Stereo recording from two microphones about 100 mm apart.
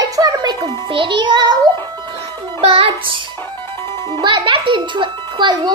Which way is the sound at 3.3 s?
25° left (ahead or behind).